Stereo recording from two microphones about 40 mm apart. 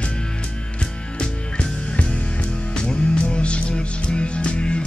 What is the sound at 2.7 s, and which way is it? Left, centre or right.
Music, left.